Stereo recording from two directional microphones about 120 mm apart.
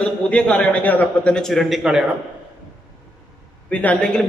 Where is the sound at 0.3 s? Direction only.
10° left (ahead or behind); by 2.0 s 5° right (ahead or behind).